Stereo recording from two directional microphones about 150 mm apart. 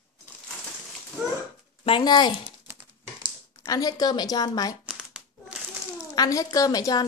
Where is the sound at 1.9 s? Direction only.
30° left (ahead or behind).